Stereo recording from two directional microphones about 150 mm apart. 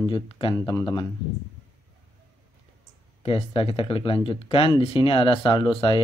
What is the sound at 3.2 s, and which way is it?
Speech, 40° left (ahead or behind).